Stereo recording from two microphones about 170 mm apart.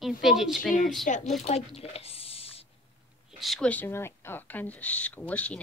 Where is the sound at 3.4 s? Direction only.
5° left (ahead or behind).